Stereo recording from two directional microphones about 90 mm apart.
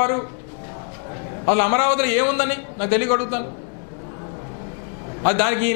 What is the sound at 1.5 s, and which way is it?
A man's voice, 15° left (ahead or behind).